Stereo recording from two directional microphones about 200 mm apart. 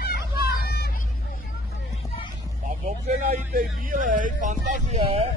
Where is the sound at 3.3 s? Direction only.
45° right (ahead or behind).